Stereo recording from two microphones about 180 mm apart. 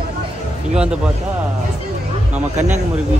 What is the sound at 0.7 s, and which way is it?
Speech, 5° right (ahead or behind).